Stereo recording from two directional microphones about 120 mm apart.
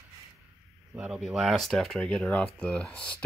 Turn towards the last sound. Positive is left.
turn(degrees=10)  # may be behind; listen again after turning